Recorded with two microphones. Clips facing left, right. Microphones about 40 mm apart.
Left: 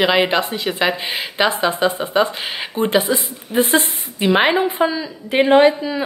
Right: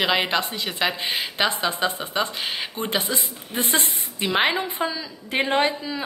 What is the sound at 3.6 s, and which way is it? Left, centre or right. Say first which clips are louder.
A woman's voice: left 8 dB; left.